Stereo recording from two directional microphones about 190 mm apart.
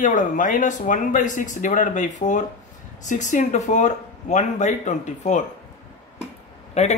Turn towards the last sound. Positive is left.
turn(degrees=35)  # may be behind; listen again after turning